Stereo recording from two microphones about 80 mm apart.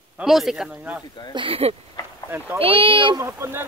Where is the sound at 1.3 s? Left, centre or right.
Right.